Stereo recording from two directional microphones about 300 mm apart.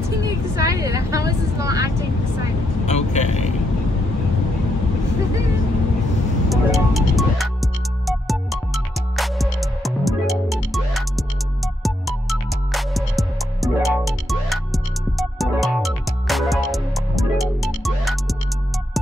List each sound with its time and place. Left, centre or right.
0.6 s speech: centre
2.9 s vehicle: left
6.5 s music: centre